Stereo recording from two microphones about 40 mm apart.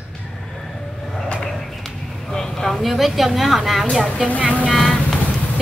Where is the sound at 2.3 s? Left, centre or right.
Centre.